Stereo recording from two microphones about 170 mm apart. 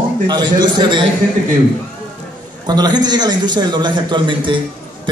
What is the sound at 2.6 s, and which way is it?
A man's voice, 25° right (ahead or behind).